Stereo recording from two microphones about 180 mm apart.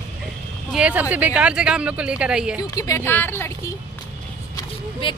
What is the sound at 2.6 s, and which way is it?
Speech, 20° left (ahead or behind).